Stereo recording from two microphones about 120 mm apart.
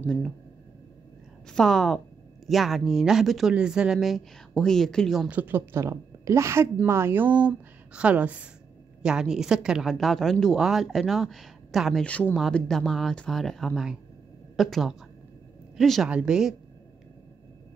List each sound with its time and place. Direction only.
0.0 s speech: 5° left (ahead or behind)
1.5 s a woman's voice: centre (ahead or behind)
5.3 s a woman's voice: 15° right (ahead or behind)
12.0 s a woman's voice: 10° left (ahead or behind); by 16.5 s 5° right (ahead or behind)